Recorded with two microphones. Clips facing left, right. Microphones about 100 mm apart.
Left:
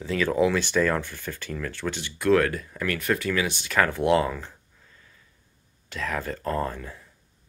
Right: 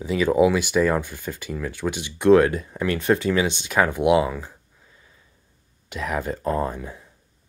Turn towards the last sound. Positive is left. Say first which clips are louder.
# right 3 dB
turn(degrees=-15)  # may be behind; listen again after turning